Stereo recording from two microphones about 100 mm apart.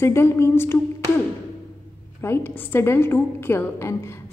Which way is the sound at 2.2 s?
25° left (ahead or behind).